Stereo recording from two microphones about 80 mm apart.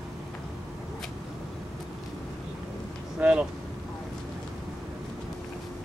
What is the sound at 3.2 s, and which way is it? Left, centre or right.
Vehicle, centre.